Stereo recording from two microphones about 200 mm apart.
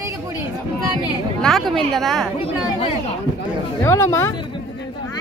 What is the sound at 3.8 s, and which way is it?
Speech, 15° left (ahead or behind).